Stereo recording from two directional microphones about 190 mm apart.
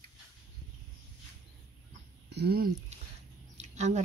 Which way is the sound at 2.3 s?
60° right (ahead or behind).